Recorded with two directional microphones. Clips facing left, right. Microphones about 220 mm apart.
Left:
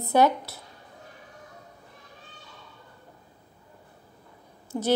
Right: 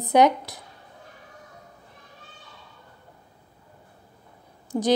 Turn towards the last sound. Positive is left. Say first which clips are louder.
# right 3 dB
turn(degrees=-15)  # may be behind; listen again after turning